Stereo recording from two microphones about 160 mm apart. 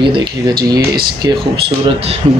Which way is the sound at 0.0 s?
30° right (ahead or behind).